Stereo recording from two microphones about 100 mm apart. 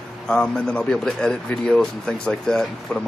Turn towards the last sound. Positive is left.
turn(degrees=5)  # may be behind; listen again after turning